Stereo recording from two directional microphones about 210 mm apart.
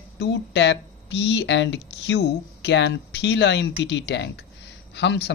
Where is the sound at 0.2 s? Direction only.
55° left (ahead or behind).